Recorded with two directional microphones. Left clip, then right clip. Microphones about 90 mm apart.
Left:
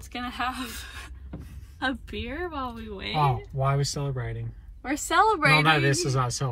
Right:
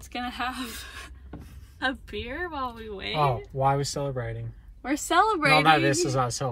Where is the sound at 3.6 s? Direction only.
90° right.